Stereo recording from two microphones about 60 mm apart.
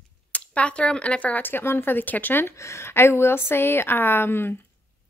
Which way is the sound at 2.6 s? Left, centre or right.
Left.